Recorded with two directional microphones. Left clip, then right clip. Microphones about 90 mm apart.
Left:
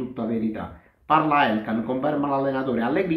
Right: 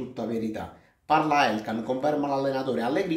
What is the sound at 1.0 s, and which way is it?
A man's voice, 15° right (ahead or behind).